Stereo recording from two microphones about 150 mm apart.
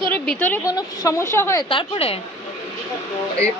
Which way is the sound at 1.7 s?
35° left (ahead or behind).